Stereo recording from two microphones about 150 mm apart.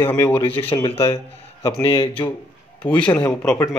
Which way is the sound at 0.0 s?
15° left (ahead or behind).